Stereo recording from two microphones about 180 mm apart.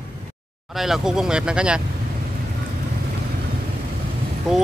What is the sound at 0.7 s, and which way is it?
Speech, centre (ahead or behind).